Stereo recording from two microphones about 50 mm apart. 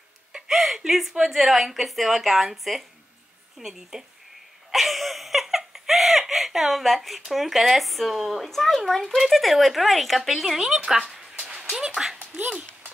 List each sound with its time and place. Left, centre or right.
0.3 s a woman's voice: centre
4.6 s giggle: centre
8.5 s speech: centre
11.3 s a sound: centre
12.4 s speech: right